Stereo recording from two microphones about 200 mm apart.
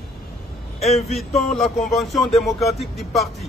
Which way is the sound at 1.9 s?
Centre (ahead or behind).